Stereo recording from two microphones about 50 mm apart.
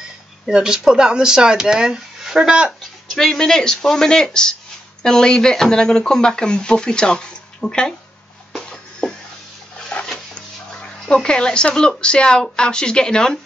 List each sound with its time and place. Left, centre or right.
0.5 s speech: centre
3.1 s speech: centre
8.5 s music: centre
10.1 s dog: centre
11.2 s speech: centre